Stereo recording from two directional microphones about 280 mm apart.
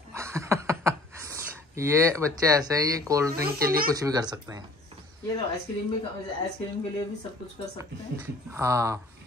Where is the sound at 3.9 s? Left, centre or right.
Centre.